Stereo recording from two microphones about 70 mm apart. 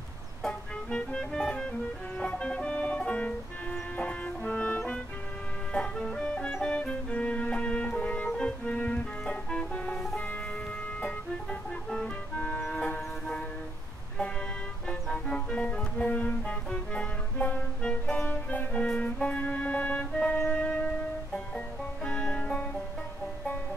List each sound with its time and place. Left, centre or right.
0.4 s music: centre
12.4 s music: centre
14.9 s music: centre